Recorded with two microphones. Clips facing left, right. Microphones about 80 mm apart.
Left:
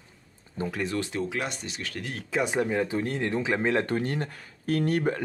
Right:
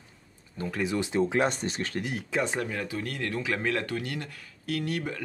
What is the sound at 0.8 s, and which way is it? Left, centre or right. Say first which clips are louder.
Speech: right 7 dB; centre.